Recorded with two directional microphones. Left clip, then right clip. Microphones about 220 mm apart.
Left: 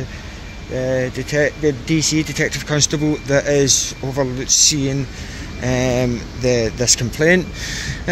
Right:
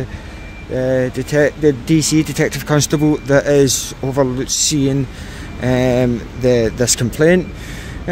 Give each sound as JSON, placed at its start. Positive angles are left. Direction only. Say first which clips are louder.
{"t": 0.7, "sound": "speech", "louder": "right 3 dB", "side_deg": -30}